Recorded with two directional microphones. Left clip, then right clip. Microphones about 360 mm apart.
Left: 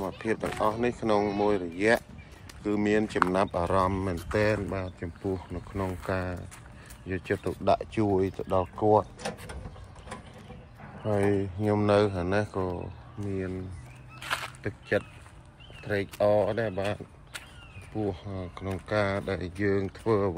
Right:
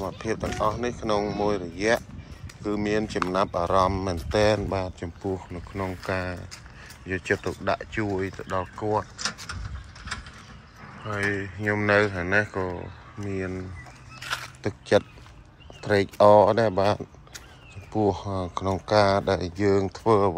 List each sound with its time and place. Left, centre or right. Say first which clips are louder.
0.0 s speech: right 1 dB; centre
9.2 s pigeon: right 5 dB; left
11.1 s speech: left 1 dB; centre
14.2 s a sound: even; centre
14.6 s speech: right 11 dB; centre
18.0 s speech: right 9 dB; centre